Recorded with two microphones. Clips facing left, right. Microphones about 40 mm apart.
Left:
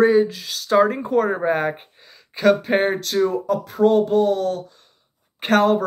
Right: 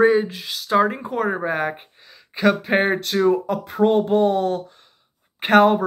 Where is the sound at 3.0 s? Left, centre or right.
Right.